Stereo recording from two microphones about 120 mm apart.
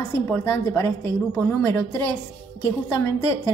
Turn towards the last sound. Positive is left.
turn(degrees=20)  # may be behind; listen again after turning